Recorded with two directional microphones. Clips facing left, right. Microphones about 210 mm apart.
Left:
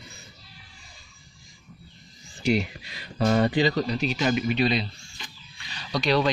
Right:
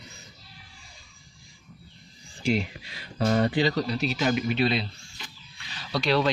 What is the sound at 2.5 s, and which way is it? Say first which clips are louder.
Speech: left 2 dB; centre (ahead or behind).